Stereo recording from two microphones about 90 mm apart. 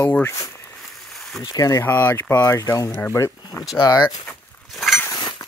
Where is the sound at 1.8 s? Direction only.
25° left (ahead or behind).